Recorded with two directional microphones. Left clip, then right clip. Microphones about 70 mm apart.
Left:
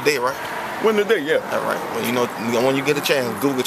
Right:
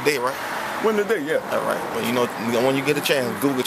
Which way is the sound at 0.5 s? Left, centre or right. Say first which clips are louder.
Even; right.